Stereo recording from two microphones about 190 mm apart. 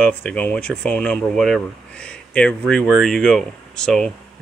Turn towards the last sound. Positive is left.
turn(degrees=0)  # may be behind; listen again after turning